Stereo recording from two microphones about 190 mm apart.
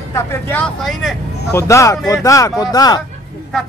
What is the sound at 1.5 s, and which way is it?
Speech, 15° left (ahead or behind).